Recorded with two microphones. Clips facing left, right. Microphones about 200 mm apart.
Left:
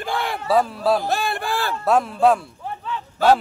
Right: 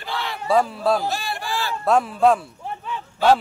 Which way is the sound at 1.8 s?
Centre (ahead or behind).